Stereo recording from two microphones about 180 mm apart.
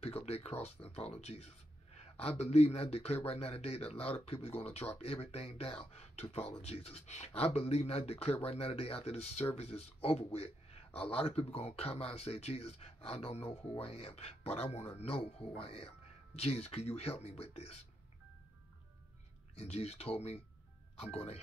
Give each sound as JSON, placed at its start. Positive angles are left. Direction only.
{"t": 0.0, "sound": "a man's voice", "side_deg": 35}
{"t": 19.5, "sound": "speech", "side_deg": 35}